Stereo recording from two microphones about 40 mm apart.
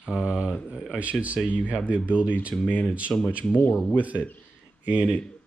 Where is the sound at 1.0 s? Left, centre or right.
Right.